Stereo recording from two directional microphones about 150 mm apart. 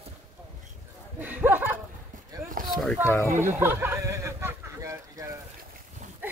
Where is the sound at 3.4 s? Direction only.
15° right (ahead or behind).